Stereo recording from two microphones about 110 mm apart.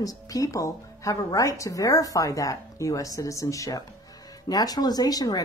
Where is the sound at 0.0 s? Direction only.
30° left (ahead or behind).